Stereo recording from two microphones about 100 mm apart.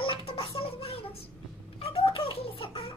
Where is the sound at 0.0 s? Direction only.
65° left (ahead or behind).